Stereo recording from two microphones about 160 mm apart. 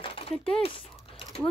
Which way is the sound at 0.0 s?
35° left (ahead or behind).